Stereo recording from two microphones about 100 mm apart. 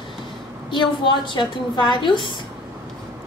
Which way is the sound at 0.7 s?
50° left (ahead or behind).